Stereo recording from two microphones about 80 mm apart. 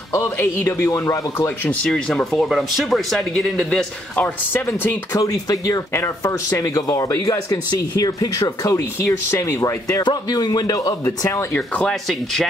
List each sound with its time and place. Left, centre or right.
0.4 s speech: left
1.7 s speech: centre
5.1 s speech: left
8.7 s speech: left
10.0 s speech: left
11.1 s speech: left
11.9 s speech: centre